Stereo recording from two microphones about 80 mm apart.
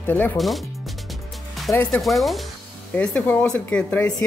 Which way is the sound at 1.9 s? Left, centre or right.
Centre.